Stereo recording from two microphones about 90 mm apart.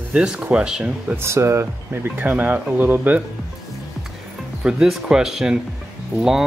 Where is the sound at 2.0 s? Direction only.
20° right (ahead or behind).